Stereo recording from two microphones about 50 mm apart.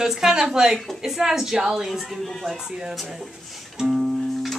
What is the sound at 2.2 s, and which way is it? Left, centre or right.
Speech, centre.